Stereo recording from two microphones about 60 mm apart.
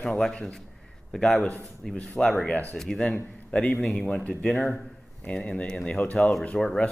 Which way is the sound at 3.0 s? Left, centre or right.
Centre.